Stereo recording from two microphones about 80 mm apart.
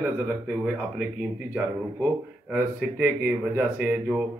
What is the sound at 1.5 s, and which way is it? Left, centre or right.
Speech, right.